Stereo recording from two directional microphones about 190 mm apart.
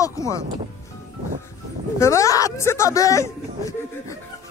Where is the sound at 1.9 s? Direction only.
15° left (ahead or behind).